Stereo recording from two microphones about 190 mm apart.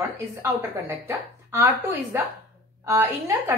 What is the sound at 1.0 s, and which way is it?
A woman's voice, 10° right (ahead or behind).